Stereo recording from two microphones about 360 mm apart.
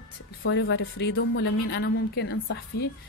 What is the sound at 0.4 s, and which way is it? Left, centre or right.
A woman's voice, left.